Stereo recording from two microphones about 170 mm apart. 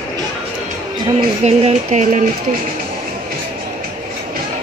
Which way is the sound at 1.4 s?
40° right (ahead or behind).